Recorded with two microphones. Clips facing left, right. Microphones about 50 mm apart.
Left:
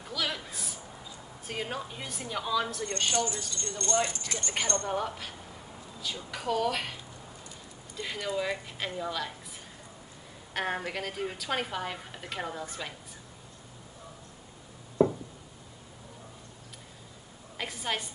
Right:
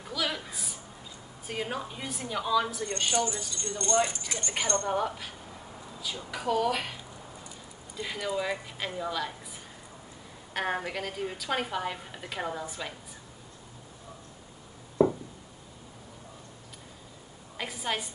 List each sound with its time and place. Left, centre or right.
0.0 s a sound: centre
1.5 s a woman's voice: centre
3.1 s speech: centre
4.8 s a woman's voice: centre
10.5 s a woman's voice: centre
17.6 s a woman's voice: centre